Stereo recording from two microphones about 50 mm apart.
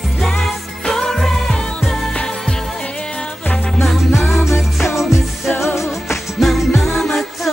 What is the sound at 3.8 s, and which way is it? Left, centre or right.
Music, centre.